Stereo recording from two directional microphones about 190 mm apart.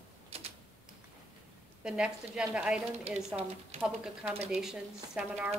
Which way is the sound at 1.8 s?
5° right (ahead or behind).